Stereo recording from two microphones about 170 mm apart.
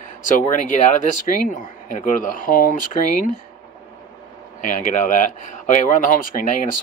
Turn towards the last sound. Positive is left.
turn(degrees=50)  # may be behind; listen again after turning